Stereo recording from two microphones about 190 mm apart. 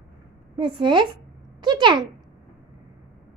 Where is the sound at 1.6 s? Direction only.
25° right (ahead or behind).